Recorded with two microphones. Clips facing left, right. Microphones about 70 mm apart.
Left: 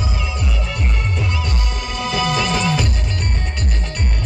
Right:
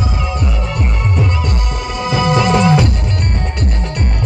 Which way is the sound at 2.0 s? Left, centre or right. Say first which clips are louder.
Right 5 dB; right.